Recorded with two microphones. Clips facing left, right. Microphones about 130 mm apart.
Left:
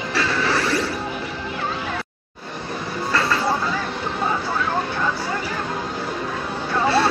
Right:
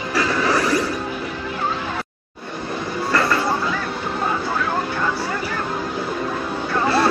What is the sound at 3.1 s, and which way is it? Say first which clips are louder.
Train: right 2 dB; 50° right (ahead or behind).